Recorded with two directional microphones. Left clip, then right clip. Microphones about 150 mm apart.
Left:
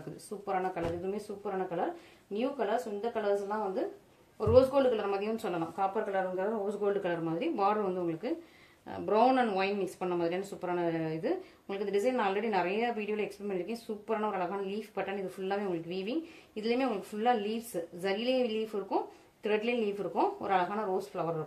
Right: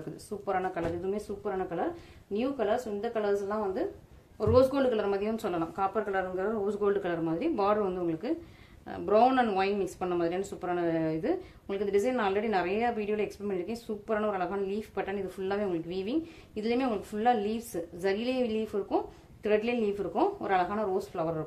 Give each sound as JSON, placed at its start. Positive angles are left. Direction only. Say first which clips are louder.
{"t": 2.3, "sound": "speech", "louder": "right 2 dB", "side_deg": -35}